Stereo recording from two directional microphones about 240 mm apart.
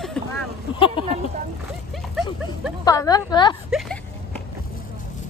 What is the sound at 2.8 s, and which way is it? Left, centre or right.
Speech, centre.